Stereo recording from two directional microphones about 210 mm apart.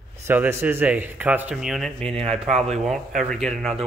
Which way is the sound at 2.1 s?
30° right (ahead or behind).